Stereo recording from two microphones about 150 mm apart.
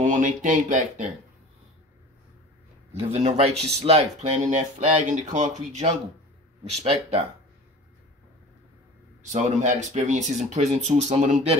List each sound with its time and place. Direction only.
0.0 s speech: 55° right (ahead or behind)
2.9 s speech: 45° right (ahead or behind)
9.3 s speech: 50° right (ahead or behind)